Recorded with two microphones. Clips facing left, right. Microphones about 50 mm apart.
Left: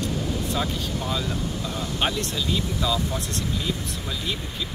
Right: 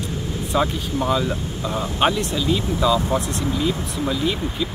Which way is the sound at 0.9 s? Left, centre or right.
Right.